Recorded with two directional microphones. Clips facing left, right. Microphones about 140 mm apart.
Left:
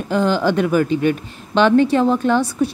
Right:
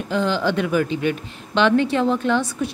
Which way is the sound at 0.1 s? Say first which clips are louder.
Left 4 dB; 45° left (ahead or behind).